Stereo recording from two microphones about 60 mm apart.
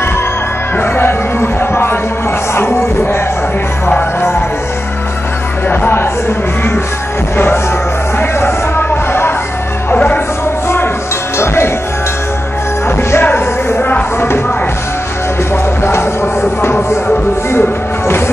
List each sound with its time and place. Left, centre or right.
0.7 s music: left
5.7 s music: left
8.2 s music: left
9.9 s music: left
11.3 s music: left
13.2 s music: left
15.5 s music: left